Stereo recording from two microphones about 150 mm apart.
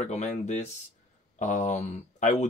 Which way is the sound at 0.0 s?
50° left (ahead or behind).